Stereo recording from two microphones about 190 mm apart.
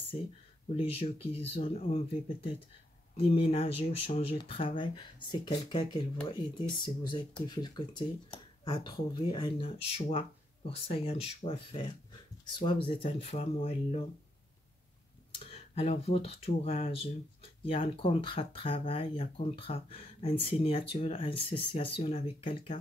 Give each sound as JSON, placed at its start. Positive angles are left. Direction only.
{"t": 0.1, "sound": "speech", "side_deg": 30}
{"t": 3.2, "sound": "speech", "side_deg": 30}
{"t": 15.3, "sound": "speech", "side_deg": 30}